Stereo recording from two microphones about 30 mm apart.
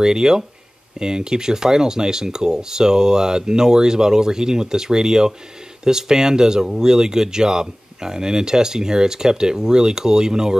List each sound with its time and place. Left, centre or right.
0.0 s speech: right